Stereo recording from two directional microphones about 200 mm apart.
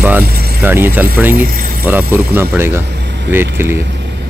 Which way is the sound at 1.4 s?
45° right (ahead or behind).